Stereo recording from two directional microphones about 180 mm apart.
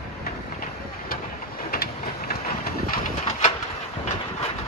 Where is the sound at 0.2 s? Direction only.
55° left (ahead or behind).